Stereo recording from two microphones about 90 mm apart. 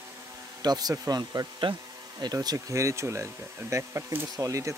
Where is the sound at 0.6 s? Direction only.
45° right (ahead or behind).